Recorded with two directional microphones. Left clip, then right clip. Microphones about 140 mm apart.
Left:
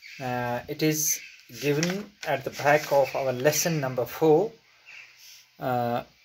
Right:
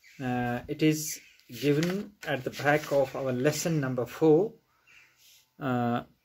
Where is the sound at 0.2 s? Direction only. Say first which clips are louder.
Left 2 dB; 50° right (ahead or behind).